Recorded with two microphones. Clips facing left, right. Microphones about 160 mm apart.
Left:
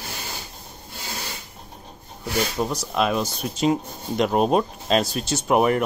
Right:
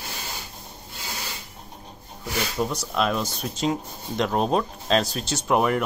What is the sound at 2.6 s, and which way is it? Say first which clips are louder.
Speech: right 2 dB; 10° left (ahead or behind).